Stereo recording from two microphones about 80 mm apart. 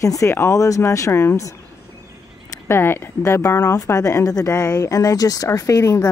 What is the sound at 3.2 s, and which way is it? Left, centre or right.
Speech, left.